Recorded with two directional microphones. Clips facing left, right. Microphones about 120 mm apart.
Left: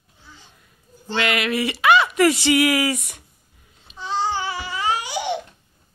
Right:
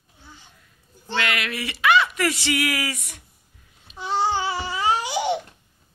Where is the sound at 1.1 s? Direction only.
20° left (ahead or behind).